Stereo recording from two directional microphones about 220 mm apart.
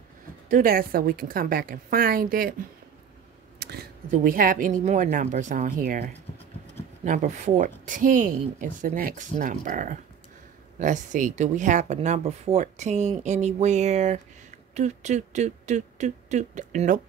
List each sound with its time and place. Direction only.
0.5 s speech: 40° right (ahead or behind)
3.5 s a sound: 50° right (ahead or behind)
4.1 s speech: 40° right (ahead or behind)